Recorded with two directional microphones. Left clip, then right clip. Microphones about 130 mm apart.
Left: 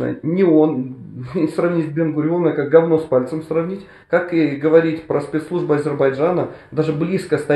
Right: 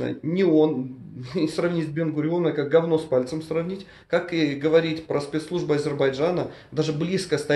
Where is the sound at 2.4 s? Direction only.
5° right (ahead or behind).